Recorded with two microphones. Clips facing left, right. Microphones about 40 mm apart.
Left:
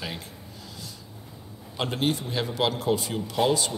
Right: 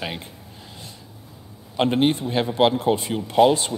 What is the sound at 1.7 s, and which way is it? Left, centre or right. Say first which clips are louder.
Speech: right 7 dB; right.